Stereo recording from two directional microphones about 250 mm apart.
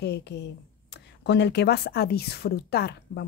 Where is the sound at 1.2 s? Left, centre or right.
Left.